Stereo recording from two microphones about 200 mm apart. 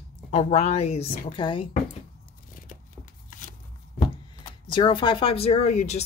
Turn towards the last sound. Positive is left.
turn(degrees=35)  # may be behind; listen again after turning